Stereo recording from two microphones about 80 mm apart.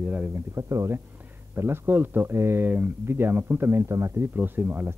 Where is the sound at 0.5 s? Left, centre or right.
Right.